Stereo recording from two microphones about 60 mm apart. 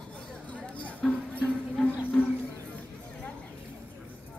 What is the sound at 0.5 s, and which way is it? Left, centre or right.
Music, left.